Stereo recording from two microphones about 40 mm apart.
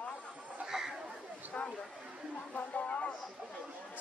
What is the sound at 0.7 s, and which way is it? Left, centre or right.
Chatter, centre.